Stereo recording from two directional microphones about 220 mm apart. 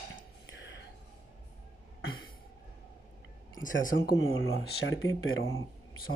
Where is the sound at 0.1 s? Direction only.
50° left (ahead or behind).